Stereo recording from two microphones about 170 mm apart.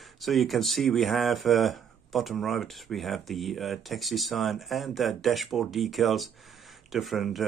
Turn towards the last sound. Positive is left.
turn(degrees=0)  # may be behind; listen again after turning